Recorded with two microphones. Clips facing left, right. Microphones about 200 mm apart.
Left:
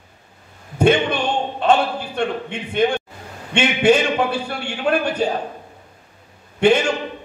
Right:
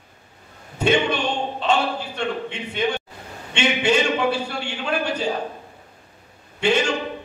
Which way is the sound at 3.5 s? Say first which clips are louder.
Left 5 dB; 55° left (ahead or behind).